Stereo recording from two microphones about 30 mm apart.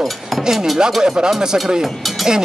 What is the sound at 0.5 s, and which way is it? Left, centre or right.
Speech, centre.